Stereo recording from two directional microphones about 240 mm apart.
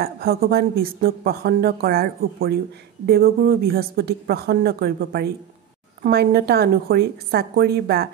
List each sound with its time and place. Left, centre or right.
0.0 s speech: right